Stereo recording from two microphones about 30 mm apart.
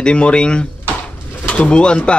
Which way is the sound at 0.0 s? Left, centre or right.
Left.